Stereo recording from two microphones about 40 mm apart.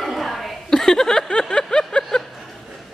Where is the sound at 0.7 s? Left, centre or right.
Centre.